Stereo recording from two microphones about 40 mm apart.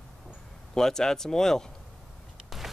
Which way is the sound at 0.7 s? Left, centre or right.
Centre.